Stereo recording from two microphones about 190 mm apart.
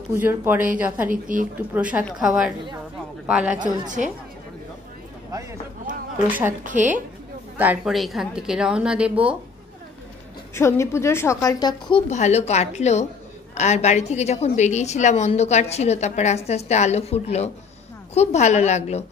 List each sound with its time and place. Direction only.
0.1 s speech: 10° right (ahead or behind)
1.1 s a woman's voice: 45° right (ahead or behind)
1.7 s a woman's voice: 10° right (ahead or behind)
5.9 s a sound: 45° right (ahead or behind)
6.2 s speech: 10° right (ahead or behind)
6.6 s a woman's voice: 40° right (ahead or behind)
7.5 s a woman's voice: 10° right (ahead or behind)
10.5 s a woman's voice: 15° left (ahead or behind)
12.1 s a woman's voice: 35° left (ahead or behind)